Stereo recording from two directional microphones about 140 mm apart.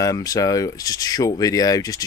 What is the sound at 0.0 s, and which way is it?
Speech, 25° left (ahead or behind).